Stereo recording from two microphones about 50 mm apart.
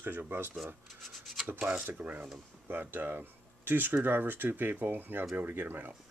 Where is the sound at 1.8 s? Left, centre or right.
Right.